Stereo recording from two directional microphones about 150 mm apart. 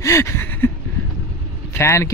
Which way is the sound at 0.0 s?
20° left (ahead or behind).